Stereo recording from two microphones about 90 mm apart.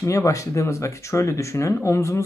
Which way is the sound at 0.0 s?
35° left (ahead or behind).